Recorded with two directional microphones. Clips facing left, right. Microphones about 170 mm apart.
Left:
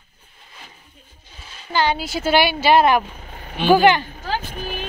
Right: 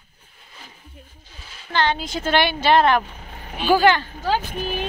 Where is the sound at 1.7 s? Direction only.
10° left (ahead or behind).